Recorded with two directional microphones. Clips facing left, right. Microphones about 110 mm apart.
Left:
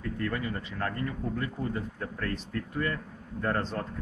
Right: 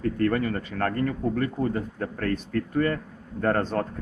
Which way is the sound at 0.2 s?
55° right (ahead or behind).